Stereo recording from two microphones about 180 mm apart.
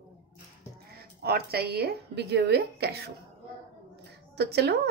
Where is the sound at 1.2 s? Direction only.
60° right (ahead or behind).